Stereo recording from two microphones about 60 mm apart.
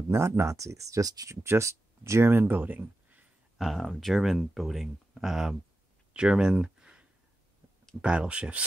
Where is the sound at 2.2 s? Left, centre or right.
Right.